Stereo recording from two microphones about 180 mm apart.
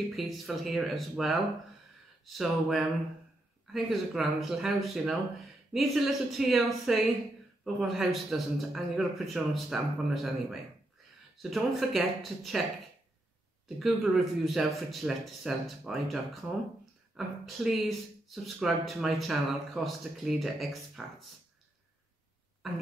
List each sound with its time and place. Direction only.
0.1 s speech: centre (ahead or behind)
14.4 s speech: centre (ahead or behind)
22.6 s speech: centre (ahead or behind)